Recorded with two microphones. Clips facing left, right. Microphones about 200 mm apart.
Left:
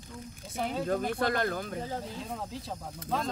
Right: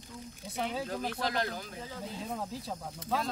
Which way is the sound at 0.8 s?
55° left (ahead or behind).